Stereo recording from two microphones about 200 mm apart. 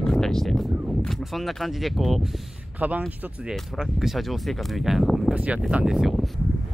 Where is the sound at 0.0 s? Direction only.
5° left (ahead or behind).